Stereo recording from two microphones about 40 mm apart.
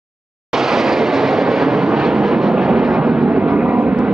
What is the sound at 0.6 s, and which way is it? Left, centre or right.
Vehicle, centre.